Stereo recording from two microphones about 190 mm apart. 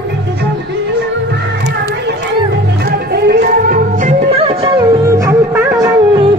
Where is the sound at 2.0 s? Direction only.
60° right (ahead or behind); by 6.3 s 20° right (ahead or behind).